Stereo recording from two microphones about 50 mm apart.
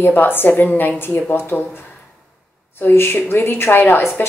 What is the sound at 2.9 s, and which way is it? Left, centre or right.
A woman's voice, left.